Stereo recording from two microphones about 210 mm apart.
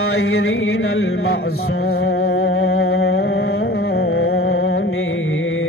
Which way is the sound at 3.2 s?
50° left (ahead or behind).